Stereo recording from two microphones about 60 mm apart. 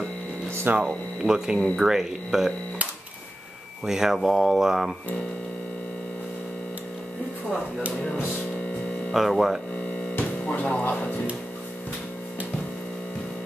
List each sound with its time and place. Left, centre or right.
0.7 s speech: right
1.2 s speech: centre
3.8 s speech: centre
9.1 s speech: centre
10.1 s music: left